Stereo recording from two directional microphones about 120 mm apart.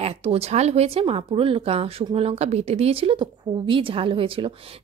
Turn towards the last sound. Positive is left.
turn(degrees=-50)  # may be behind; listen again after turning